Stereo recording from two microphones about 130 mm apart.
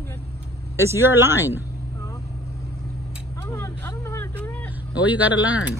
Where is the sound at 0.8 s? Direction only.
20° right (ahead or behind).